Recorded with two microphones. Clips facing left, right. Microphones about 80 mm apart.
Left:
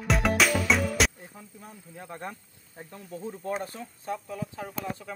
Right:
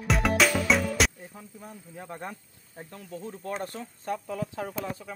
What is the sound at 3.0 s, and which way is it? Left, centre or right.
Speech, centre.